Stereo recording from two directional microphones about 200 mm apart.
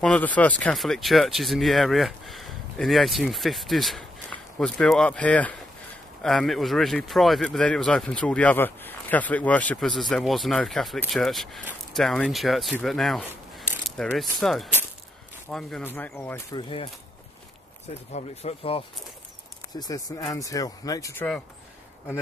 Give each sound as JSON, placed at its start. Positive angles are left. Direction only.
{"t": 0.0, "sound": "speech", "side_deg": 5}
{"t": 15.5, "sound": "speech", "side_deg": 5}
{"t": 16.5, "sound": "speech", "side_deg": 25}
{"t": 18.1, "sound": "speech", "side_deg": 30}